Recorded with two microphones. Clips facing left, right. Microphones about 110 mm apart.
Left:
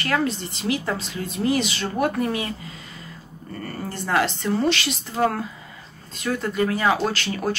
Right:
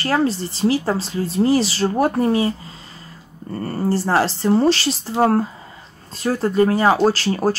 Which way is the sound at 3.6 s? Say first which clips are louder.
Right 10 dB; 35° right (ahead or behind).